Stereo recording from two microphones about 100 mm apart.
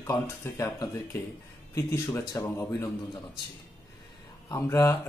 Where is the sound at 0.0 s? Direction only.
30° left (ahead or behind).